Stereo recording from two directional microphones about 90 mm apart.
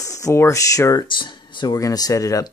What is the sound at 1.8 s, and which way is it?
Speech, 40° left (ahead or behind).